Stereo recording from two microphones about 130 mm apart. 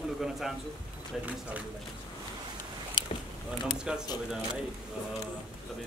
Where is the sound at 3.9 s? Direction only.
5° right (ahead or behind).